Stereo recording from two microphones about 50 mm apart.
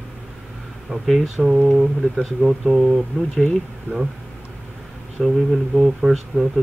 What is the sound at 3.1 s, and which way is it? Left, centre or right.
Speech, centre.